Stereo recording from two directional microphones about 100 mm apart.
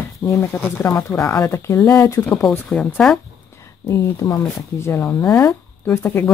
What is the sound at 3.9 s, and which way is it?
Speech, 35° left (ahead or behind).